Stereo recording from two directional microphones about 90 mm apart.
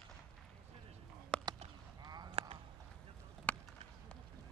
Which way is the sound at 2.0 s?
50° right (ahead or behind).